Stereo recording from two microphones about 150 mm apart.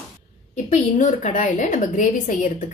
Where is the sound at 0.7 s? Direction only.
55° left (ahead or behind).